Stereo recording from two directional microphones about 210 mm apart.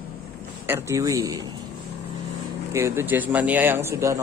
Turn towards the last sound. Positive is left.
turn(degrees=-15)  # may be behind; listen again after turning